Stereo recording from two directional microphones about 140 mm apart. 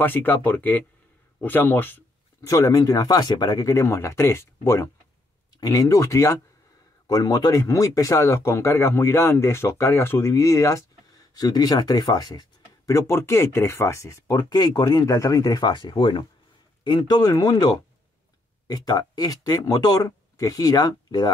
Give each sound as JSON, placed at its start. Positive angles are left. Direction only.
{"t": 0.0, "sound": "speech", "side_deg": 15}